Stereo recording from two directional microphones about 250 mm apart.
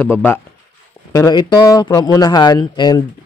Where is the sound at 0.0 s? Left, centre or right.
Centre.